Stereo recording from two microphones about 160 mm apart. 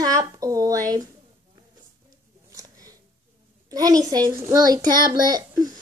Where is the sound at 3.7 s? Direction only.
20° right (ahead or behind).